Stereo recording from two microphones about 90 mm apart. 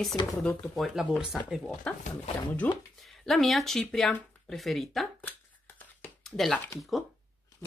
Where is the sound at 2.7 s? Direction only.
15° left (ahead or behind).